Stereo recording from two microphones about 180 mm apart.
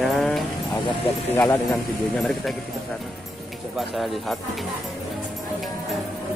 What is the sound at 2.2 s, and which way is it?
Speech, centre (ahead or behind).